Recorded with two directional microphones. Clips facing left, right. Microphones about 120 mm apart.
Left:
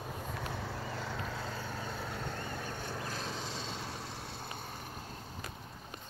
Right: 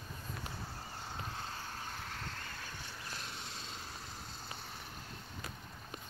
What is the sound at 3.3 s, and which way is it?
Vehicle, 90° left.